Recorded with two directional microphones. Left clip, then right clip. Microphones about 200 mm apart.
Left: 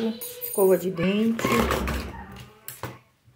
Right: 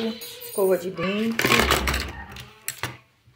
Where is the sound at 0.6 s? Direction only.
5° left (ahead or behind).